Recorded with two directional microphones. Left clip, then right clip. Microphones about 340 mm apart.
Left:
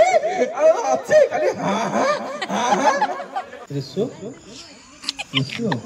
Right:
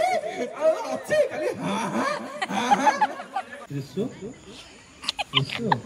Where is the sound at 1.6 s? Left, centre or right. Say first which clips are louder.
Left 7 dB; left.